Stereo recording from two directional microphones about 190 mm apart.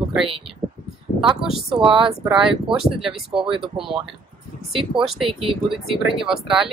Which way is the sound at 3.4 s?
25° right (ahead or behind).